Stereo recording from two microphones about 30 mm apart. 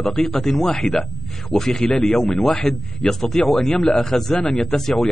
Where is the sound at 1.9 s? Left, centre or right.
Left.